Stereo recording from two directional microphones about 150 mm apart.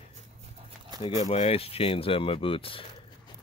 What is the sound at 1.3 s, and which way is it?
Speech, 45° left (ahead or behind).